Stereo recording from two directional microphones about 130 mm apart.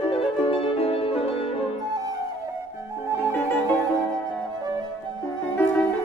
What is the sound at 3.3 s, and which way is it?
Music, 15° left (ahead or behind).